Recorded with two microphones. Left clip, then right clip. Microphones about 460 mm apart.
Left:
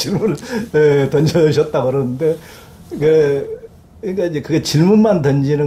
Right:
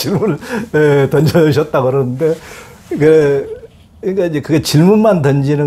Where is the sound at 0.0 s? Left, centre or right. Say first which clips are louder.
Right 3 dB; right.